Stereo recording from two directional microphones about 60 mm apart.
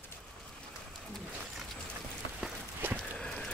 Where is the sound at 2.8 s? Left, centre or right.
Right.